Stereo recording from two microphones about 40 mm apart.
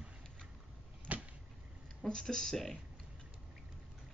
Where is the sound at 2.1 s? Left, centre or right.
Centre.